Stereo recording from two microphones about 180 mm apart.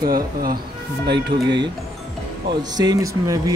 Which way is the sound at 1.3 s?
25° right (ahead or behind).